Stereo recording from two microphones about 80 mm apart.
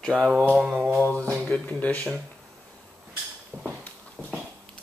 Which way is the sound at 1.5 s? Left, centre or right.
Centre.